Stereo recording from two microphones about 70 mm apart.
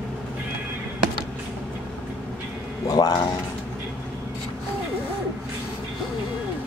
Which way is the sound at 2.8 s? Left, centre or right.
Left.